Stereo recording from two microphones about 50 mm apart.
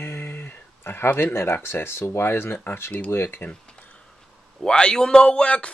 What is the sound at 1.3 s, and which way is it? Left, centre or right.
Speech, left.